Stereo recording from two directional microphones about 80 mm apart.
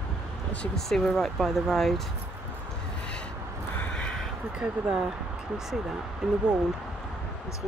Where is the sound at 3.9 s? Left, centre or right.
Centre.